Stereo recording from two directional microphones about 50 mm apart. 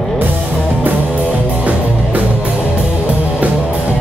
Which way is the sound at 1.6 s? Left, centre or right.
Right.